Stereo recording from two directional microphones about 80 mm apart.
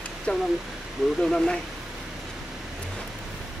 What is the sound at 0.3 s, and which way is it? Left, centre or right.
Speech, centre.